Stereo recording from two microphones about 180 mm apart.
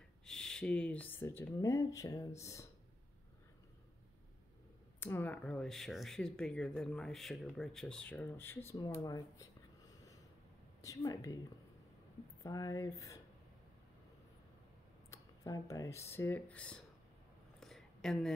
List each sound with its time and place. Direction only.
0.2 s speech: 5° left (ahead or behind)
5.0 s speech: 10° left (ahead or behind)
10.8 s speech: 20° left (ahead or behind)
12.4 s speech: 20° left (ahead or behind)
15.0 s speech: 20° left (ahead or behind)
17.6 s a sound: centre (ahead or behind)